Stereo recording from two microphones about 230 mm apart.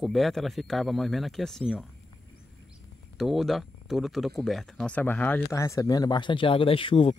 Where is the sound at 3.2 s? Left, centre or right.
Centre.